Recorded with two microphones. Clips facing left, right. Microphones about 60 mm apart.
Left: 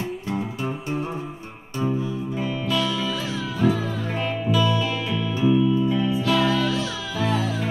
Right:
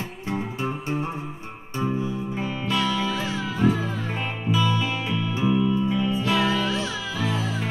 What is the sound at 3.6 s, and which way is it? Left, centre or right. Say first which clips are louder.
Music: left 1 dB; right.